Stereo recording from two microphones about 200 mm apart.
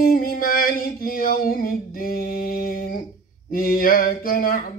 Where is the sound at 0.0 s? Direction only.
45° left (ahead or behind).